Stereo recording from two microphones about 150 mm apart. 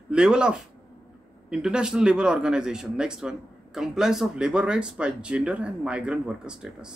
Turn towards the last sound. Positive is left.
turn(degrees=-5)  # may be behind; listen again after turning